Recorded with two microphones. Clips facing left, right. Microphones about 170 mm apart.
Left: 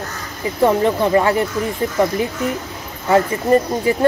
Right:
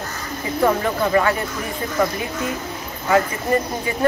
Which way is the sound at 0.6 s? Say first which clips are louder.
Left 4 dB; 25° left (ahead or behind).